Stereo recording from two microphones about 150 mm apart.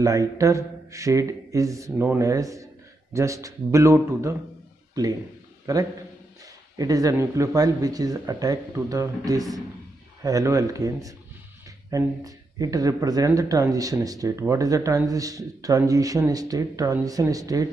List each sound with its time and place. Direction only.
0.0 s speech: 20° right (ahead or behind)